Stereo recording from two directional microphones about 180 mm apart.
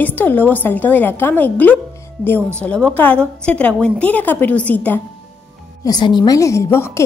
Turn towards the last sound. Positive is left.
turn(degrees=15)  # may be behind; listen again after turning